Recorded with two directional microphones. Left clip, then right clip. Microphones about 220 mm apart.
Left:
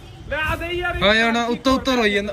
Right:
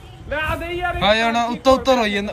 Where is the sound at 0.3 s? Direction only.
40° right (ahead or behind).